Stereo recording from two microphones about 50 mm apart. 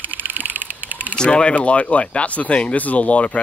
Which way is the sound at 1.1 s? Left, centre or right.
Centre.